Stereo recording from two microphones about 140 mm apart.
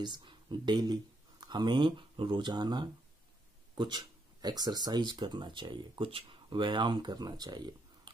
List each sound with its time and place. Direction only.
0.0 s speech: 35° right (ahead or behind)